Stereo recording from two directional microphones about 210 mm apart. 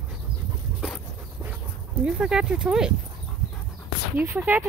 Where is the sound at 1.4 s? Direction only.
5° right (ahead or behind).